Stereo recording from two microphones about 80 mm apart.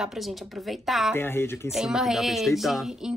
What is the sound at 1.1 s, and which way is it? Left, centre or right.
Speech, left.